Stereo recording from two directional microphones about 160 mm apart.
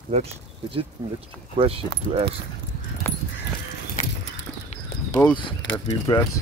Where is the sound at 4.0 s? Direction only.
55° left (ahead or behind).